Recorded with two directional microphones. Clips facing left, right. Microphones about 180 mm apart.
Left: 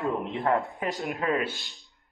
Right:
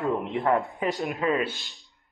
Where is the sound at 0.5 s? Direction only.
Centre (ahead or behind).